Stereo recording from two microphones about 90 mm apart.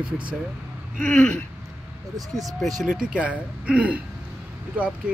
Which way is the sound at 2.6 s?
5° right (ahead or behind).